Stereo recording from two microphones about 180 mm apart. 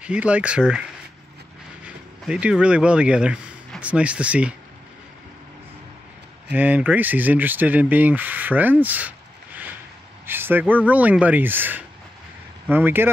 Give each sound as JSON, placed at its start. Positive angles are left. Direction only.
{"t": 0.0, "sound": "speech", "side_deg": -5}
{"t": 1.9, "sound": "speech", "side_deg": -5}
{"t": 6.5, "sound": "speech", "side_deg": -10}
{"t": 10.2, "sound": "speech", "side_deg": -10}